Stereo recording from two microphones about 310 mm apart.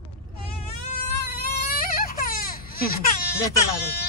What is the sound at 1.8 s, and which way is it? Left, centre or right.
Baby cry, left.